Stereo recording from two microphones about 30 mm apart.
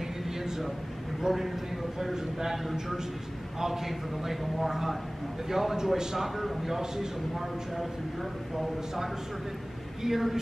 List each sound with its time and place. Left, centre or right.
1.3 s a man's voice: centre
6.1 s a man's voice: centre
8.5 s a man's voice: centre